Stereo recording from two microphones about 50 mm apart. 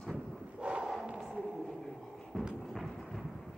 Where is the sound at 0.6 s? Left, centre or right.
Right.